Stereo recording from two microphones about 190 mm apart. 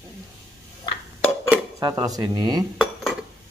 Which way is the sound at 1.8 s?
20° right (ahead or behind).